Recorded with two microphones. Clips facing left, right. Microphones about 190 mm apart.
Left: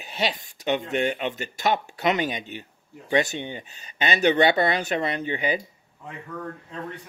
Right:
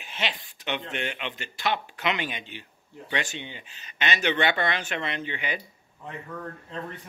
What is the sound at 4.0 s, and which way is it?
Speech, 35° left (ahead or behind).